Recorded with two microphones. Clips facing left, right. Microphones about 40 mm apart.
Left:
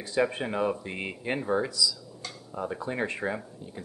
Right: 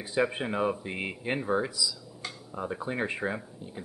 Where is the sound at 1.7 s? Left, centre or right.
Centre.